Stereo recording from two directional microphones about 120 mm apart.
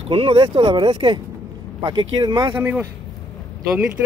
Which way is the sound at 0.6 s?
35° right (ahead or behind).